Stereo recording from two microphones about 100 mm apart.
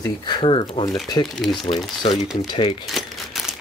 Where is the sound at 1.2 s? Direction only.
Centre (ahead or behind).